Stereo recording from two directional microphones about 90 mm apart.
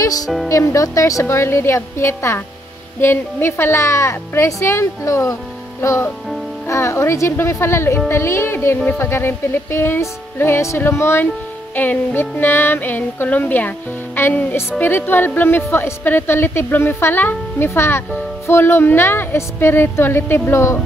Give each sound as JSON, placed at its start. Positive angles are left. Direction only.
{"t": 0.5, "sound": "speech", "side_deg": 35}
{"t": 8.1, "sound": "music", "side_deg": 30}